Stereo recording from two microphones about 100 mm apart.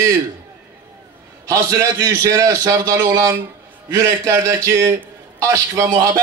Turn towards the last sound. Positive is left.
turn(degrees=-30)  # may be behind; listen again after turning